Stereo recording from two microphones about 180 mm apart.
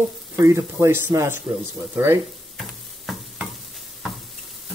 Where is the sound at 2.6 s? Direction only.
Centre (ahead or behind).